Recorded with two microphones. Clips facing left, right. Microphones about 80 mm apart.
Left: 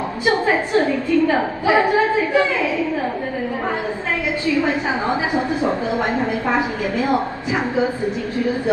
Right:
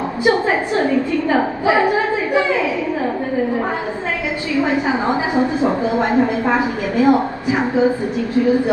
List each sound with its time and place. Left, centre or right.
0.2 s a woman's voice: right
4.6 s a woman's voice: right